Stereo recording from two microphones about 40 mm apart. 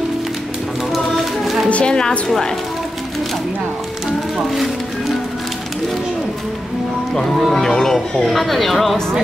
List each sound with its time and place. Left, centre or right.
0.9 s music: centre
1.7 s music: left
2.0 s speech: centre
7.2 s speech: centre